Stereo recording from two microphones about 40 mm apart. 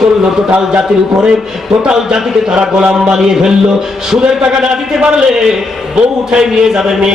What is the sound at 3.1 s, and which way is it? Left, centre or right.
Speech, centre.